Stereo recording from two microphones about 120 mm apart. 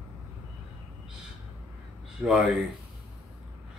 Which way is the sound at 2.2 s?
5° right (ahead or behind).